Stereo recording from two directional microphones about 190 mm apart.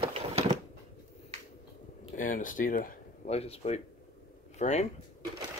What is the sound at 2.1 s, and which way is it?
Speech, 45° left (ahead or behind).